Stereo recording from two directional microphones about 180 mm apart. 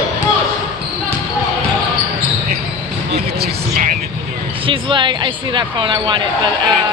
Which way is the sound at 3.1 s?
55° right (ahead or behind).